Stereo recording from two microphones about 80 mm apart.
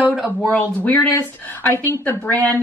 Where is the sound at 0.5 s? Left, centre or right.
Left.